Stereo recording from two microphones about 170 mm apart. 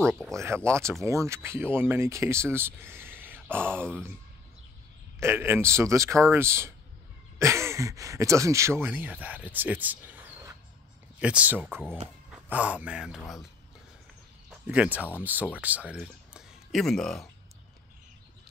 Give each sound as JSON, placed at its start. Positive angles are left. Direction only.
{"t": 0.3, "sound": "speech", "side_deg": -15}
{"t": 5.2, "sound": "speech", "side_deg": -15}
{"t": 14.7, "sound": "speech", "side_deg": -10}